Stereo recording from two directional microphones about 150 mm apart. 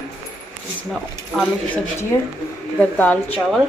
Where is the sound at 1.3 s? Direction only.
10° left (ahead or behind).